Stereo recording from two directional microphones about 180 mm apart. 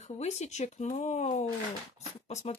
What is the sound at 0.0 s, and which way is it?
Speech, 40° left (ahead or behind).